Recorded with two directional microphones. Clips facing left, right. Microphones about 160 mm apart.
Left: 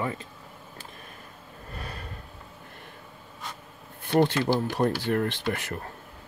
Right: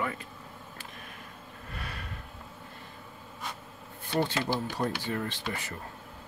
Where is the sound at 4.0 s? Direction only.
65° left (ahead or behind).